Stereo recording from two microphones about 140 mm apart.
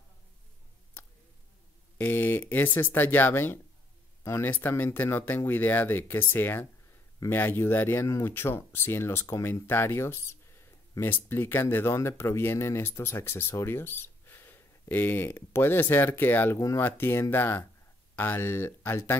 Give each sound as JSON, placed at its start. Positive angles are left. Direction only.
{"t": 2.0, "sound": "speech", "side_deg": 15}